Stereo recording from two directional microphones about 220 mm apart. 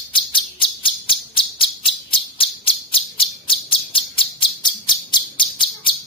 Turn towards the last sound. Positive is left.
turn(degrees=20)  # may be behind; listen again after turning